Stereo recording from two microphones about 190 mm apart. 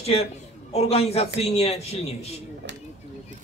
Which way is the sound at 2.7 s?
65° right (ahead or behind).